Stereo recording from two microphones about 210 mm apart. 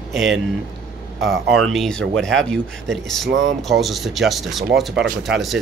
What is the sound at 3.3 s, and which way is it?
Speech, 60° right (ahead or behind).